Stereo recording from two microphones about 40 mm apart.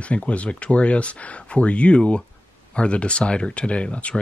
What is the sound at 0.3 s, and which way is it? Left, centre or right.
Speech, left.